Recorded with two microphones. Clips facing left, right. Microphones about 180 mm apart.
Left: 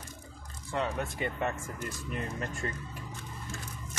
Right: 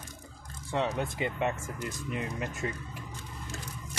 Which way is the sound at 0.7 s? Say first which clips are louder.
Right 2 dB; 25° right (ahead or behind).